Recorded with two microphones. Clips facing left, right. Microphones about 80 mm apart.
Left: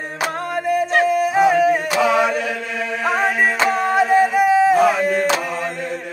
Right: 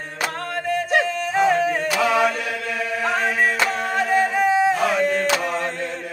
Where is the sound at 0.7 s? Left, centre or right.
Centre.